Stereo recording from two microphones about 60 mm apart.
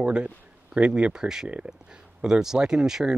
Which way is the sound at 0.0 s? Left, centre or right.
Centre.